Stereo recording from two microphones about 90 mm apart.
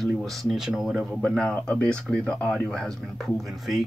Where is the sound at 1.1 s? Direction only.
10° left (ahead or behind).